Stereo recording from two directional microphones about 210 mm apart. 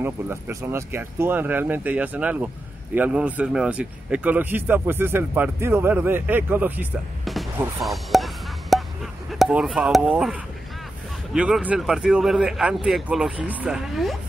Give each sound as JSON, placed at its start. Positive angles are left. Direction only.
{"t": 0.0, "sound": "speech", "side_deg": -15}
{"t": 7.8, "sound": "a sound", "side_deg": 0}
{"t": 11.3, "sound": "speech", "side_deg": -5}